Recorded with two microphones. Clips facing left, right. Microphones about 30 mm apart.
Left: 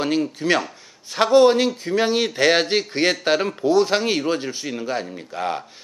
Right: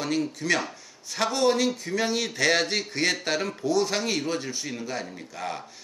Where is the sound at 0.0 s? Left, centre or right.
Left.